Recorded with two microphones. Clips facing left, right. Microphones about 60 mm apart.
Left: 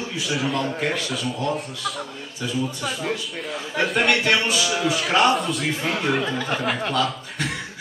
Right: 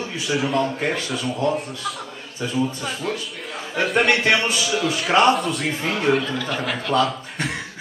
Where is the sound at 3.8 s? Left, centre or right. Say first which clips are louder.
Right 2 dB; centre.